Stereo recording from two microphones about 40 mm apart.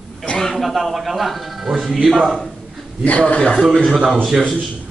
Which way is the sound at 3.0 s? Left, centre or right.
Left.